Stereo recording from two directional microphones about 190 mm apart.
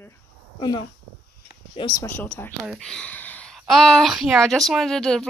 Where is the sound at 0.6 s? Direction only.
25° left (ahead or behind).